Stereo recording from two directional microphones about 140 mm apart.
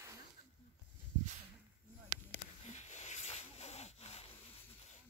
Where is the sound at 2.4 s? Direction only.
55° left (ahead or behind).